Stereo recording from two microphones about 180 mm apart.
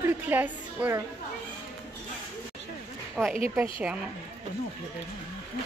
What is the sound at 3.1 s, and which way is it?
Speech, centre (ahead or behind).